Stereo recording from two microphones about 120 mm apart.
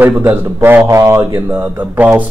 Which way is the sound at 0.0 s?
15° right (ahead or behind).